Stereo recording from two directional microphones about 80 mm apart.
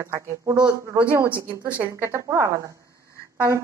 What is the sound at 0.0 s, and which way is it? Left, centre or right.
Speech, right.